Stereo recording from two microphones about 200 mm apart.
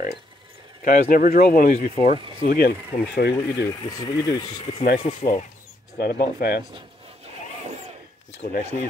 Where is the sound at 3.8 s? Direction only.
20° left (ahead or behind).